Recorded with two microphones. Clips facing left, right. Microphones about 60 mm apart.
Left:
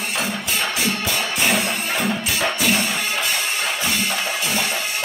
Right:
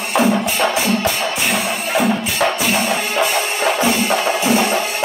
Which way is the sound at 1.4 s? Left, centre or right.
Centre.